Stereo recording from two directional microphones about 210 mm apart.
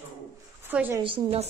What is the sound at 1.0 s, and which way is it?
Speech, 25° right (ahead or behind).